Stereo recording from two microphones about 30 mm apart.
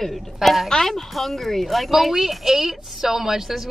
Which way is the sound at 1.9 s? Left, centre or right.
Centre.